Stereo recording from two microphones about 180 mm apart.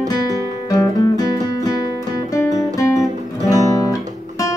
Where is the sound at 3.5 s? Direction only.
20° left (ahead or behind).